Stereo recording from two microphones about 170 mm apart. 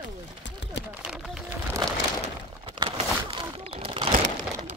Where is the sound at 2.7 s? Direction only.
35° right (ahead or behind).